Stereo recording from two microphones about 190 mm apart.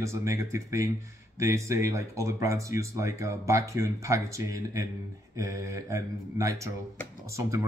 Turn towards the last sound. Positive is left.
turn(degrees=-15)  # may be behind; listen again after turning